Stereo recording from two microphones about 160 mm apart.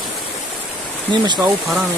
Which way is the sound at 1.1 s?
30° right (ahead or behind).